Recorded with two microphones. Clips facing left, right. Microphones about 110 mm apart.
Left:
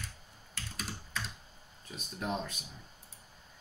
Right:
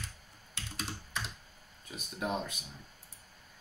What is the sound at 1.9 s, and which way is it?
Speech, 10° right (ahead or behind).